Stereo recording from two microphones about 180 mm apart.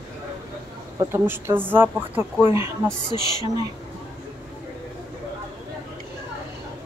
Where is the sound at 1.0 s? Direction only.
15° right (ahead or behind).